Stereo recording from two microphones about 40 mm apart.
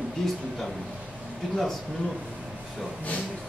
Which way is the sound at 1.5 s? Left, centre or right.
Centre.